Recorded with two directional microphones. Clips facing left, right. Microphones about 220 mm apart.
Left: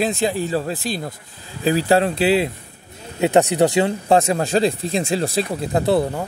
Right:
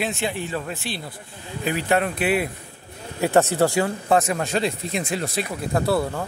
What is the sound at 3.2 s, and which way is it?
Speech, 15° left (ahead or behind).